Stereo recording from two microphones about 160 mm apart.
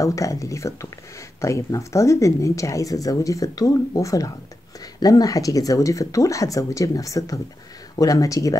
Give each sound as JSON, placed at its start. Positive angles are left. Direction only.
{"t": 0.0, "sound": "speech", "side_deg": 20}